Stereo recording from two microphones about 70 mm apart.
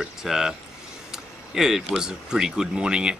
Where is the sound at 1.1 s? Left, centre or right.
Centre.